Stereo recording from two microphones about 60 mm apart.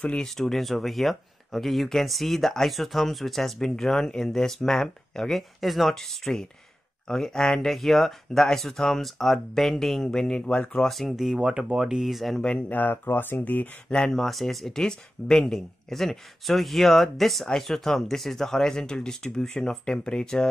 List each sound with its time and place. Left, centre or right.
0.0 s speech: centre
0.4 s speech: centre
10.4 s speech: left
10.9 s speech: centre
11.3 s speech: centre
12.6 s speech: left
13.8 s speech: centre
14.1 s speech: centre